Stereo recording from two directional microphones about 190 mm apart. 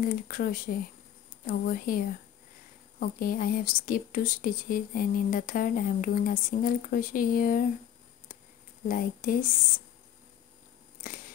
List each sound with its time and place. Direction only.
0.0 s speech: 50° left (ahead or behind)
8.8 s speech: 50° left (ahead or behind)
11.0 s scissors: 45° left (ahead or behind)